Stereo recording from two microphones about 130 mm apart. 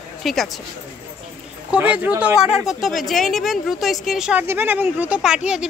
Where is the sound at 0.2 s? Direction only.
Centre (ahead or behind).